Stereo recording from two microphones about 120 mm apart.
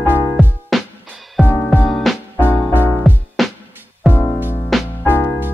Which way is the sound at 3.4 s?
Centre (ahead or behind).